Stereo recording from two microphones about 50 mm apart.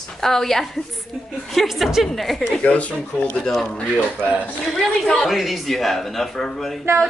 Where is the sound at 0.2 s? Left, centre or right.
Centre.